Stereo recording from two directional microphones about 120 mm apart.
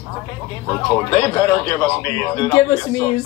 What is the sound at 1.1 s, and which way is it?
Speech, 20° left (ahead or behind).